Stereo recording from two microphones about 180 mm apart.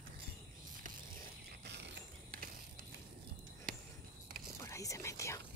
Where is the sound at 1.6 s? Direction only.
70° right (ahead or behind).